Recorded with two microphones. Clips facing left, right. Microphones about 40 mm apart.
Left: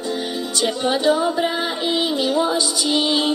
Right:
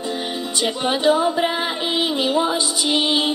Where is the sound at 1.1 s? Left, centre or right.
Centre.